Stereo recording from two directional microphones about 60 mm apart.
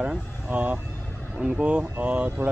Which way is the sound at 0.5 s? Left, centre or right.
Right.